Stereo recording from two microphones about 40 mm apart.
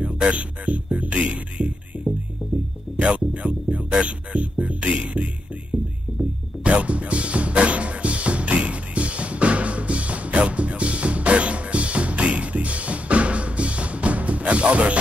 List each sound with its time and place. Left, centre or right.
0.0 s music: right